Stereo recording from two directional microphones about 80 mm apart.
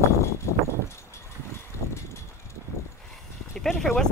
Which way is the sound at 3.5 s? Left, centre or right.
Centre.